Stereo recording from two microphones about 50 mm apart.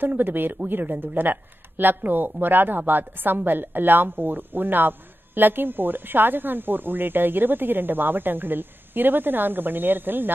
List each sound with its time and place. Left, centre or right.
0.0 s a woman's voice: right